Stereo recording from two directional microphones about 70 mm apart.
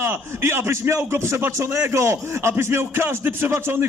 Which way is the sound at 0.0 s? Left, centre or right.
Right.